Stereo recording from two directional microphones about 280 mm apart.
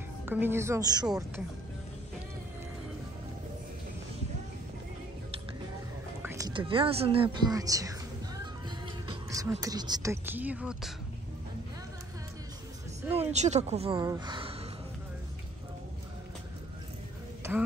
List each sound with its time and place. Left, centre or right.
0.2 s a woman's voice: centre
6.2 s speech: centre
8.6 s music: centre
13.1 s speech: right
17.4 s a sound: centre